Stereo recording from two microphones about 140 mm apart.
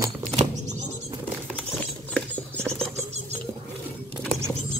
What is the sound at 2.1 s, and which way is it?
Rodents, 5° left (ahead or behind).